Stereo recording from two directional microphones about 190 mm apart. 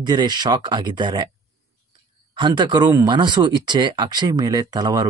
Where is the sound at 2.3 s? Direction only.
25° right (ahead or behind).